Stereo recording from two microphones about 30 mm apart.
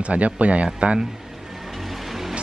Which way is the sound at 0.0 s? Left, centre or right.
Right.